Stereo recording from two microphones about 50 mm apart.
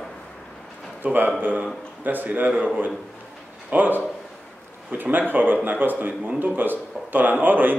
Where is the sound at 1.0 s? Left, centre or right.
Right.